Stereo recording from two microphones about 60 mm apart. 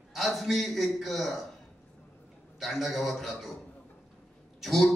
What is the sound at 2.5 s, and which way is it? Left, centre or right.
Speech, centre.